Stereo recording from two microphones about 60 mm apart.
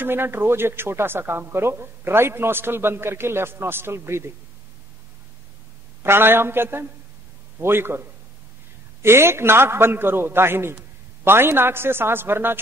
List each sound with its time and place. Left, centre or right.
0.0 s speech: right
6.0 s speech: right
9.0 s speech: right